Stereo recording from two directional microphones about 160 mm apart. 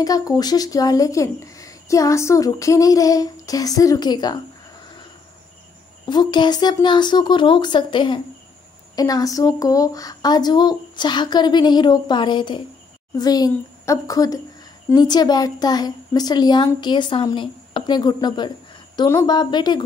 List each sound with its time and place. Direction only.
0.0 s speech: 25° left (ahead or behind)
6.0 s speech: 25° left (ahead or behind)